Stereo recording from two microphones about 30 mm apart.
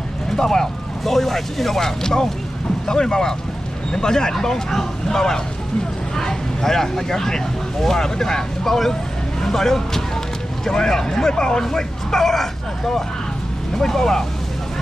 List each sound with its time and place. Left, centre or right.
0.4 s speech: centre
6.6 s speech: centre
8.6 s speech: centre
11.7 s speech: centre